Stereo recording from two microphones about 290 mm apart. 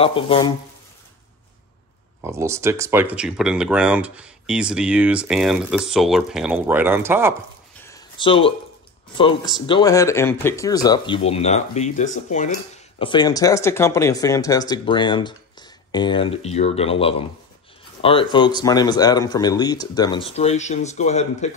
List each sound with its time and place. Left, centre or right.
0.0 s speech: centre
2.2 s speech: centre
7.8 s a sound: centre
9.1 s speech: centre